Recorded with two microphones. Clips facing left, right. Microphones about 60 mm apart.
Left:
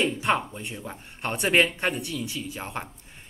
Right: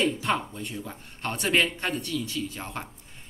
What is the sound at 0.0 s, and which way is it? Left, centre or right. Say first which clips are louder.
A woman's voice: left 1 dB; left.